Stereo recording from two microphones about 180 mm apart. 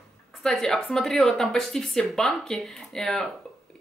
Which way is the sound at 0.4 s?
5° left (ahead or behind).